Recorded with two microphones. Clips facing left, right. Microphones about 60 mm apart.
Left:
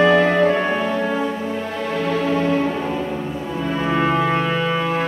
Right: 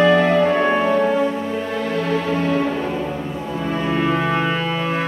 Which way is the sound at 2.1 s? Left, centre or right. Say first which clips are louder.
Left 2 dB; centre.